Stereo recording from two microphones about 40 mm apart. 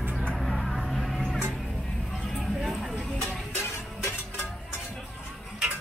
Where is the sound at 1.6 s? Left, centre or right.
Centre.